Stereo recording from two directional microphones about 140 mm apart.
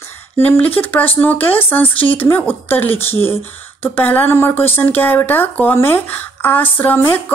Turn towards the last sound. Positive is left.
turn(degrees=15)  # may be behind; listen again after turning